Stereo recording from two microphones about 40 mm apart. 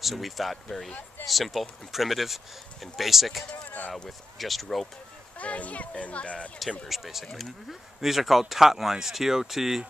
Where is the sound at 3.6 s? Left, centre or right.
Left.